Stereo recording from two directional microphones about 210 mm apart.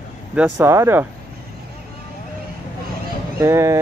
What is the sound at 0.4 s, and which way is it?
Speech, 10° right (ahead or behind).